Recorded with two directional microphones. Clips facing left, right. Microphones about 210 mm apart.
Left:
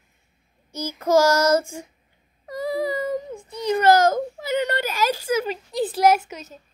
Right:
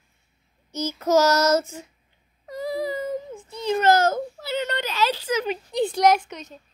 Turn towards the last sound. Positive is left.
turn(degrees=5)  # may be behind; listen again after turning